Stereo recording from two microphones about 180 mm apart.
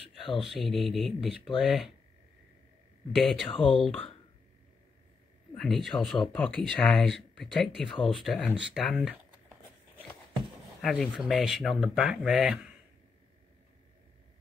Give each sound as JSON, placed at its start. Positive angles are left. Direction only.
{"t": 0.0, "sound": "a sound", "side_deg": 30}
{"t": 0.4, "sound": "speech", "side_deg": 0}
{"t": 3.2, "sound": "speech", "side_deg": 0}
{"t": 5.6, "sound": "speech", "side_deg": 0}
{"t": 10.8, "sound": "speech", "side_deg": 0}